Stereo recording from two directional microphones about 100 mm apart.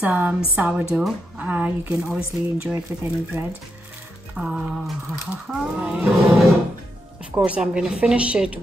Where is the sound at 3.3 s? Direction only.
20° right (ahead or behind).